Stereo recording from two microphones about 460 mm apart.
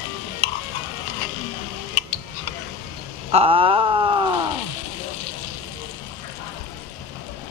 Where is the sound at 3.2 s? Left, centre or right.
Centre.